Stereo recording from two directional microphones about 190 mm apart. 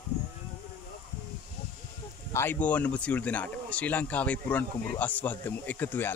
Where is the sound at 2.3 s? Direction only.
10° left (ahead or behind).